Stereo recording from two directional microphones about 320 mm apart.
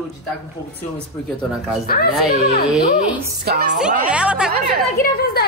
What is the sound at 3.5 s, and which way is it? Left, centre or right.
Speech, right.